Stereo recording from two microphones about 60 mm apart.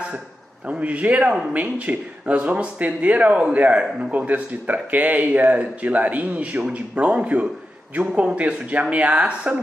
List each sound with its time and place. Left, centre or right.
0.7 s speech: right